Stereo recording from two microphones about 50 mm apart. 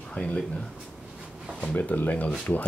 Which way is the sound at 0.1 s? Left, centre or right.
Left.